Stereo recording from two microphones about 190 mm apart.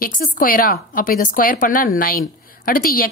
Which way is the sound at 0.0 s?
45° left (ahead or behind).